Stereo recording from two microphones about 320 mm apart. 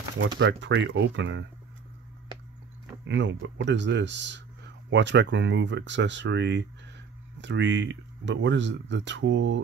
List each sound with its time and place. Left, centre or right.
0.4 s speech: right
3.1 s speech: right